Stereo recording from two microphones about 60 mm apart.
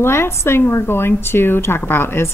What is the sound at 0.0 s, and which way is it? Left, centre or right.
Speech, left.